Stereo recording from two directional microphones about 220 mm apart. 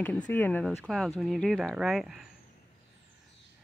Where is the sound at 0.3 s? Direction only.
10° left (ahead or behind).